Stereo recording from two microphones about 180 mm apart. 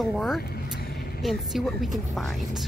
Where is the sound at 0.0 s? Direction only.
Centre (ahead or behind).